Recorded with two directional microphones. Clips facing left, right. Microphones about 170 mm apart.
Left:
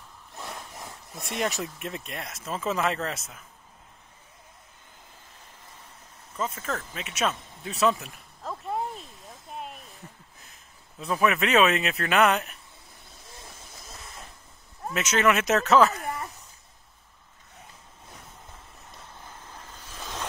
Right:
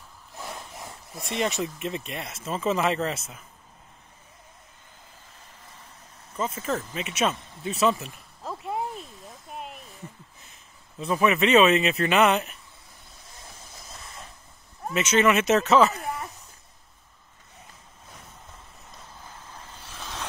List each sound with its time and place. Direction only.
0.4 s speech: centre (ahead or behind)
6.3 s speech: centre (ahead or behind)
11.0 s speech: centre (ahead or behind)
13.7 s train: centre (ahead or behind)
15.0 s speech: centre (ahead or behind)
19.7 s vehicle: 15° left (ahead or behind)